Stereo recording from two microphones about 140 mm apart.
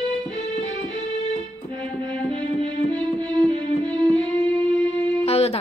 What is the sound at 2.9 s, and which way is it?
Music, 30° right (ahead or behind).